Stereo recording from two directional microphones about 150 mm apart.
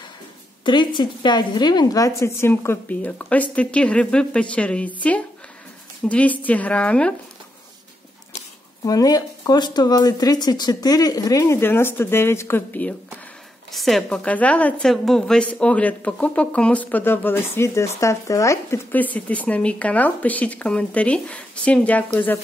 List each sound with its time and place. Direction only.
0.7 s a woman's voice: 30° left (ahead or behind); by 4.9 s 10° left (ahead or behind)
6.0 s a woman's voice: 10° left (ahead or behind)
8.4 s speech: 25° left (ahead or behind)
13.7 s a woman's voice: centre (ahead or behind)